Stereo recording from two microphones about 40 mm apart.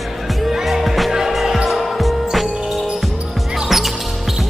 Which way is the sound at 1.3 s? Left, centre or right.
Centre.